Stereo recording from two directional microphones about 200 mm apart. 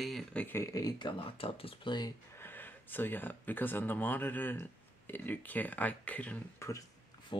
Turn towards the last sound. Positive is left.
turn(degrees=25)  # may be behind; listen again after turning